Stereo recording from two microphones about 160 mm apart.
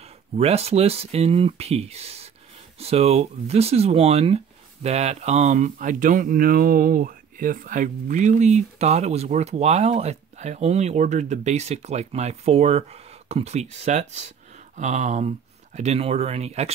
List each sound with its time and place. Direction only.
0.4 s speech: 40° right (ahead or behind)